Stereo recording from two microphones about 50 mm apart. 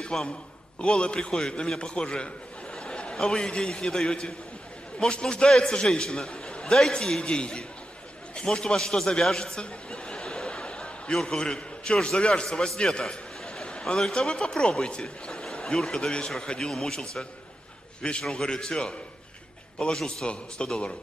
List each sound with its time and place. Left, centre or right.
0.1 s a man's voice: centre
9.4 s a sound: centre
11.2 s a man's voice: centre
18.3 s a man's voice: centre